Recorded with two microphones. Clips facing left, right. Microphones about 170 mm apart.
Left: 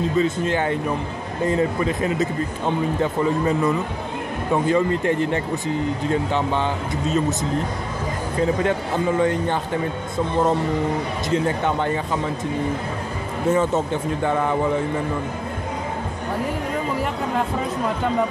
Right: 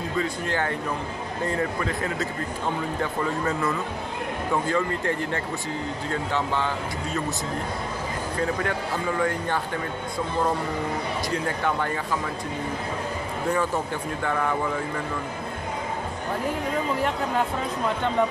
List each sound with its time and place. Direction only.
0.2 s speech: 20° left (ahead or behind)
8.4 s speech: 20° left (ahead or behind)
11.2 s speech: 20° left (ahead or behind)
13.5 s speech: 20° left (ahead or behind)